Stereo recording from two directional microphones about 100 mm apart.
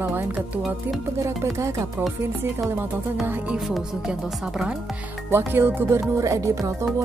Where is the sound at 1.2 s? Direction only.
30° right (ahead or behind).